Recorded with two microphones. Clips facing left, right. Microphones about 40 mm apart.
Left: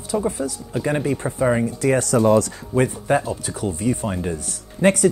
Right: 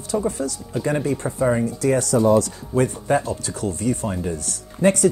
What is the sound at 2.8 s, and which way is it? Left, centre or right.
Speech, centre.